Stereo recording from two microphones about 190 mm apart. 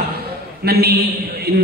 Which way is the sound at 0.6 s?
55° right (ahead or behind).